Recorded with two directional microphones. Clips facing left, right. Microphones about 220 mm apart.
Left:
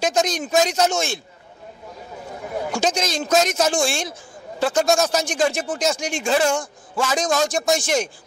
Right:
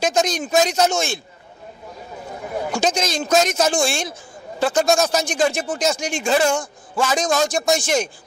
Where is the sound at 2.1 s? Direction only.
25° right (ahead or behind).